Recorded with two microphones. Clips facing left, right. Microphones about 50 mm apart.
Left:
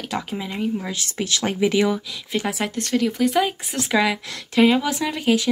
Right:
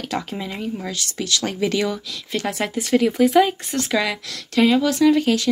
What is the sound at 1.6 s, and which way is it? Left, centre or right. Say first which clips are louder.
Speech: left 4 dB; centre.